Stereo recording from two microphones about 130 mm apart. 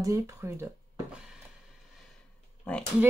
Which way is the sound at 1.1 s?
5° right (ahead or behind).